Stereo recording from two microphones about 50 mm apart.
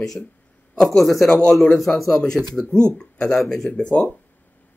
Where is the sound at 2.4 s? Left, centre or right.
Centre.